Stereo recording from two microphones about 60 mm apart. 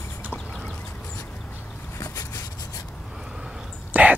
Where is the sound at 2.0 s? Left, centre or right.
Left.